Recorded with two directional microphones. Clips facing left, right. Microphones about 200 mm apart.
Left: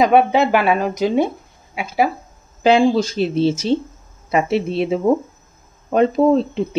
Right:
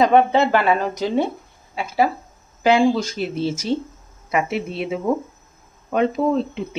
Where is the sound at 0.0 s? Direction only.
10° left (ahead or behind).